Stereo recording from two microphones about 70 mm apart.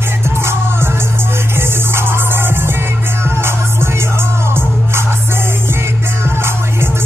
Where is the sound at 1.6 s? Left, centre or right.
Right.